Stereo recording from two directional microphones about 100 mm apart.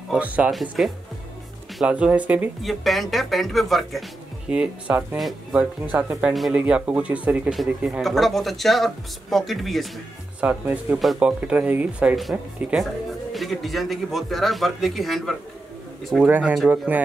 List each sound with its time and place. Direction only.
0.1 s speech: 15° right (ahead or behind)
0.5 s a man's voice: centre (ahead or behind)
1.8 s speech: 10° right (ahead or behind)
2.6 s a man's voice: centre (ahead or behind)
4.5 s a man's voice: 10° right (ahead or behind)
10.4 s a man's voice: 10° right (ahead or behind)
16.3 s speech: 15° right (ahead or behind)